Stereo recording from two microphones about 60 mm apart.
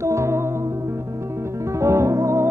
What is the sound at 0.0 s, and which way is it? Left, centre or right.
Music, right.